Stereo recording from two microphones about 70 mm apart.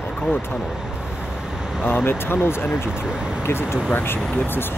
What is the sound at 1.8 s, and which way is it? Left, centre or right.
Speech, left.